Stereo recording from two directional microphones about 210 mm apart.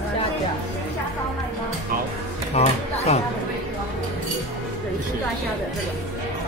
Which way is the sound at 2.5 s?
30° left (ahead or behind).